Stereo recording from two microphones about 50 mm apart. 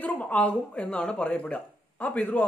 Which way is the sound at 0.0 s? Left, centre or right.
Left.